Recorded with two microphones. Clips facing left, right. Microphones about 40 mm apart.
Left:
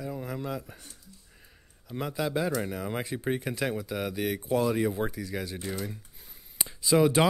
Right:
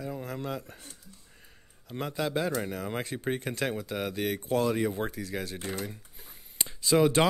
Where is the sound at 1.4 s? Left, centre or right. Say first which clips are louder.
Even; centre.